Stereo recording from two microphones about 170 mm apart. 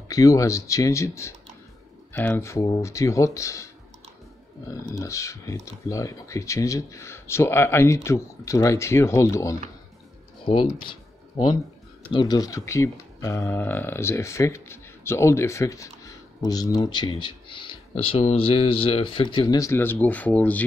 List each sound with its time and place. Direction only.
0.1 s speech: 20° left (ahead or behind)
4.9 s speech: 20° left (ahead or behind)
10.4 s speech: 30° left (ahead or behind)
12.1 s speech: 25° left (ahead or behind); by 20.6 s 10° left (ahead or behind)